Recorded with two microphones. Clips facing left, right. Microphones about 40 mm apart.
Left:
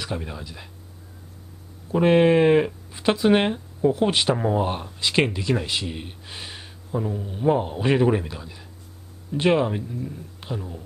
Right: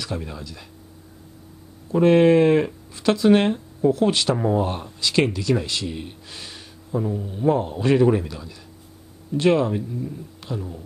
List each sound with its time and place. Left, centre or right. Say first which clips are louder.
0.0 s a man's voice: even; centre
1.9 s a man's voice: right 2 dB; centre
7.0 s a man's voice: right 2 dB; centre